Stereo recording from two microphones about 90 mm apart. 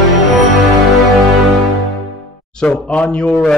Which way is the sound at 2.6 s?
15° left (ahead or behind).